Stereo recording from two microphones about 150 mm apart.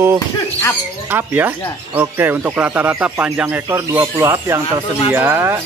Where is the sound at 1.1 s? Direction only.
15° right (ahead or behind).